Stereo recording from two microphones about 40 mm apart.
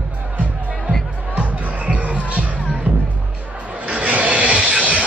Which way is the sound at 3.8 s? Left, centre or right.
Right.